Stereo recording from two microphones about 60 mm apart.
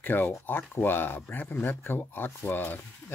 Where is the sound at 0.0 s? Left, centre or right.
Left.